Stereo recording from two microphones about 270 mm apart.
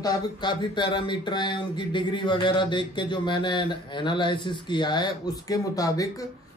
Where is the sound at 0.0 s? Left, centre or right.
Centre.